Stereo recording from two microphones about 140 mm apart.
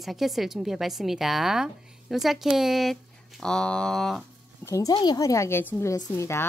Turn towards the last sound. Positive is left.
turn(degrees=20)  # may be behind; listen again after turning